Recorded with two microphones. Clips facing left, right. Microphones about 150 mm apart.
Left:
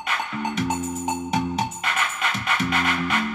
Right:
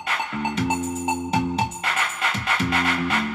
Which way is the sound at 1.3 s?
30° right (ahead or behind).